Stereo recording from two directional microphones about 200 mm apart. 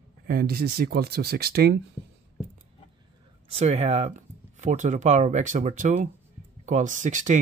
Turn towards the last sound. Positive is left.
turn(degrees=-40)  # may be behind; listen again after turning